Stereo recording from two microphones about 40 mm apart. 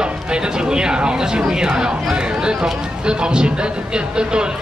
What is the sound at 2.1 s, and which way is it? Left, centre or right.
Speech, right.